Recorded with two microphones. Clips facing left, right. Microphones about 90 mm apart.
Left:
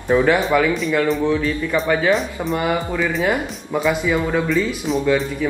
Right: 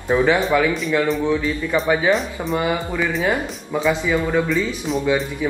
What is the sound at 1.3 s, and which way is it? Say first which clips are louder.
Speech: left 1 dB; 10° right (ahead or behind).